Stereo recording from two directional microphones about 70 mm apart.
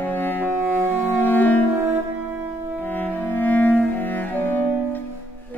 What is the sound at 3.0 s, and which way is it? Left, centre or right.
Cello, left.